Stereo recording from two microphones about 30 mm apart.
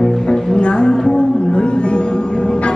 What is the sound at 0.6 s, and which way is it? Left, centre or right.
Music, left.